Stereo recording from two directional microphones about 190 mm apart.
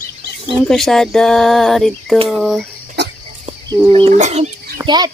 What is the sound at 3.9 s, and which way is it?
Speech, 35° right (ahead or behind).